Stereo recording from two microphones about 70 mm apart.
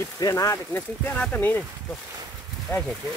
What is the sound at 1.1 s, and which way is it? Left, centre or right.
Speech, centre.